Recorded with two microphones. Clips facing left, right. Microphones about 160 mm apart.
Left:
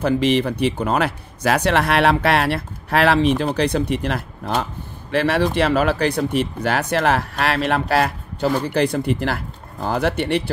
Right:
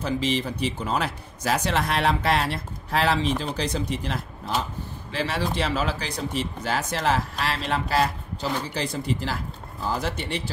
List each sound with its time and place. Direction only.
0.0 s speech: 65° left (ahead or behind)